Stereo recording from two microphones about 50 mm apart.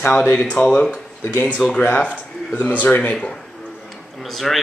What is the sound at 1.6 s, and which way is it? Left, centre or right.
Speech, centre.